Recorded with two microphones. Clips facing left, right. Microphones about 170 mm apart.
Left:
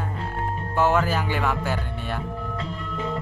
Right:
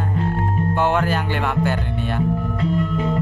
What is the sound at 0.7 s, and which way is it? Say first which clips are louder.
Speech: even; centre (ahead or behind).